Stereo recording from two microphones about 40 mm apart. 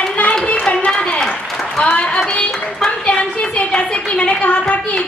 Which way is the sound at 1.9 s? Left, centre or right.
Left.